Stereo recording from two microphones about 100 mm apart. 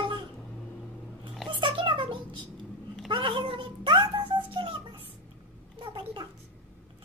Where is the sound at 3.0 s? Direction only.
60° right (ahead or behind).